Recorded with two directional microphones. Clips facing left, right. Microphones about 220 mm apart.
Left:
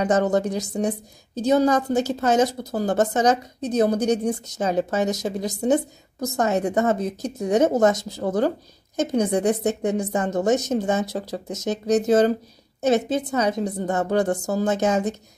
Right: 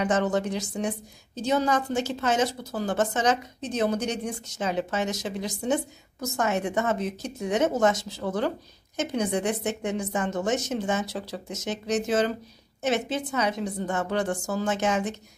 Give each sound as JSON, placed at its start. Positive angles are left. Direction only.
{"t": 0.0, "sound": "a woman's voice", "side_deg": 40}